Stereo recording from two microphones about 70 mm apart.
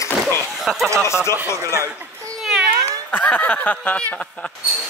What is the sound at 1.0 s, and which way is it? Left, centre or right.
Speech, left.